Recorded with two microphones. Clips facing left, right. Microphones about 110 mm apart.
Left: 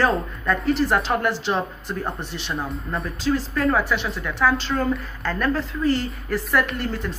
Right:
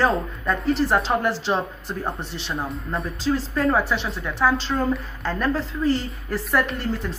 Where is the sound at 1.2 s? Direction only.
30° right (ahead or behind).